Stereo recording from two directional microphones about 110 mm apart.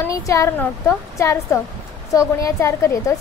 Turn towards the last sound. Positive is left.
turn(degrees=30)  # may be behind; listen again after turning